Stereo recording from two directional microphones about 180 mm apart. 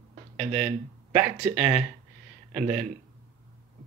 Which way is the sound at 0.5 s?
Centre (ahead or behind).